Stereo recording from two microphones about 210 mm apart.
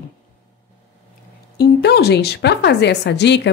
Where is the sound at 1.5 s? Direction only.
50° left (ahead or behind).